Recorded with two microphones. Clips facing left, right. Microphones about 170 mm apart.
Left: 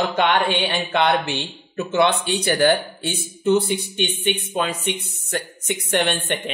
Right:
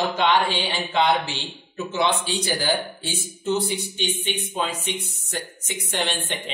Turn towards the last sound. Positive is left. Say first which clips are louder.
# left 6 dB
turn(degrees=60)  # may be behind; listen again after turning